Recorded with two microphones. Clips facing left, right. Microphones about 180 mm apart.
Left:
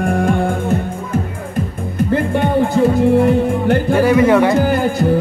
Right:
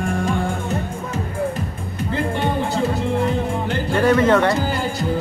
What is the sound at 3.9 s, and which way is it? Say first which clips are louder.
Music: left 3 dB; 10° left (ahead or behind).